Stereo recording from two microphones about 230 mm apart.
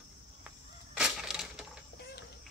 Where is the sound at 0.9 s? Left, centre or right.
Centre.